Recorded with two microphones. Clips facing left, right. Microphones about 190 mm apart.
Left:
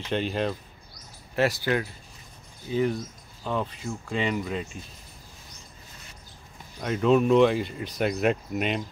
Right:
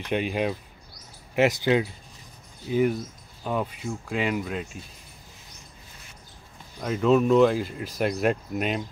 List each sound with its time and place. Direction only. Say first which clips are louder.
0.1 s speech: right 1 dB; 10° right (ahead or behind)
6.8 s speech: right 1 dB; centre (ahead or behind)